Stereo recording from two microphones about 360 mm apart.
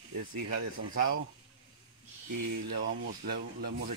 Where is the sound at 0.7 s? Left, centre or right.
Right.